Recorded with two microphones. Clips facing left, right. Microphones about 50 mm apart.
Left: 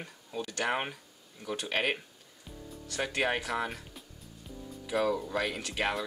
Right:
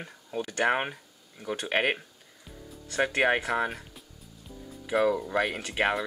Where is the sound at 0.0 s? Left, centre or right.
Right.